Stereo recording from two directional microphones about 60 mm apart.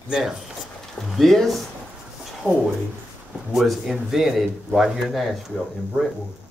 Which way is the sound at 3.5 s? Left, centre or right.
Centre.